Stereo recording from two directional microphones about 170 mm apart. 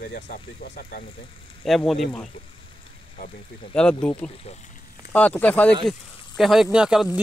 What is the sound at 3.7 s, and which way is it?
Speech, 5° left (ahead or behind).